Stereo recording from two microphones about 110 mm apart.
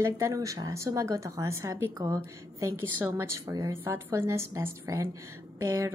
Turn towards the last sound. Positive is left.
turn(degrees=-25)  # may be behind; listen again after turning